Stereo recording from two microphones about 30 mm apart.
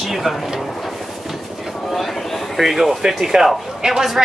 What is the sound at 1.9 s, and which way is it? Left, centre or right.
Vehicle, centre.